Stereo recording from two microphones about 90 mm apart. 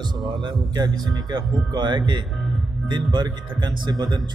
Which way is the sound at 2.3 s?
Centre (ahead or behind).